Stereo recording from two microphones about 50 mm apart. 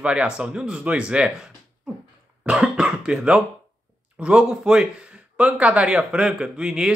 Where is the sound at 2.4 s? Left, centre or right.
Centre.